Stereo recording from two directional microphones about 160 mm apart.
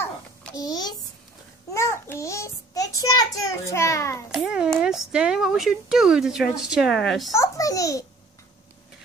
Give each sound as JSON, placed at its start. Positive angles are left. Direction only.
{"t": 0.6, "sound": "a child's voice", "side_deg": 25}
{"t": 4.3, "sound": "speech", "side_deg": -5}
{"t": 7.3, "sound": "a child's voice", "side_deg": 20}